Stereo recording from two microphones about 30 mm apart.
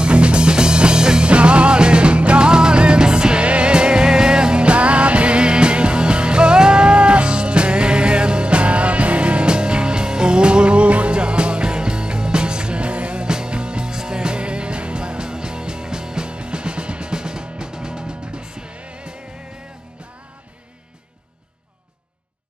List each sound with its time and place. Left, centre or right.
0.0 s music: right
1.2 s music: right
4.6 s music: right
13.2 s music: right
18.8 s music: right